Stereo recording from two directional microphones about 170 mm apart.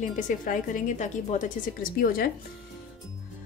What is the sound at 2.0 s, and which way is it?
Speech, 60° left (ahead or behind).